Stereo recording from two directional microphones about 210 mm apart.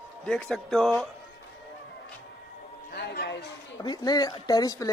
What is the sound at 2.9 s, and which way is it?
Speech, 50° left (ahead or behind).